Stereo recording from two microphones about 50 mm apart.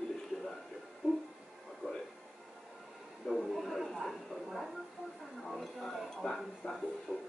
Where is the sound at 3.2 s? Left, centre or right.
Centre.